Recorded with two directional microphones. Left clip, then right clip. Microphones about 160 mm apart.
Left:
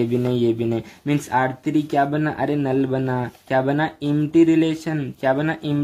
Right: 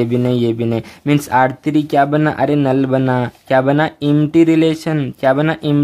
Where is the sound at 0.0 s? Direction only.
30° right (ahead or behind).